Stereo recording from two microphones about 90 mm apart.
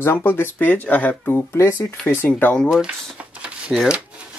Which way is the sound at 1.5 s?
30° left (ahead or behind).